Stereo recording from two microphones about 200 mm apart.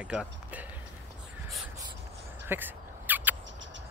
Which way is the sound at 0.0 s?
5° right (ahead or behind).